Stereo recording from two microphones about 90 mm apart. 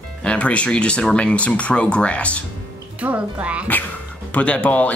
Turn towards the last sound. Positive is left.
turn(degrees=15)  # may be behind; listen again after turning